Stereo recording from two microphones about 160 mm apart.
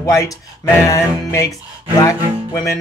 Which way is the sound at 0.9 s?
20° left (ahead or behind).